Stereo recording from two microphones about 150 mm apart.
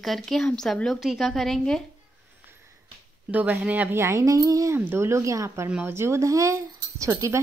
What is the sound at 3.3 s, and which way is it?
Speech, 10° right (ahead or behind).